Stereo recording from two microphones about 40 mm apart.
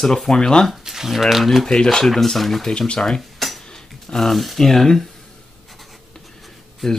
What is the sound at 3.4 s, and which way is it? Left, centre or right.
Dishes, centre.